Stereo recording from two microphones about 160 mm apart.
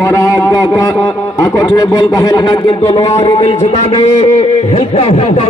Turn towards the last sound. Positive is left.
turn(degrees=45)  # may be behind; listen again after turning